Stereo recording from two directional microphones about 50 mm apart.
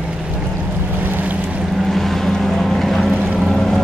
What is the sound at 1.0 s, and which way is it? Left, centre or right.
Boat, right.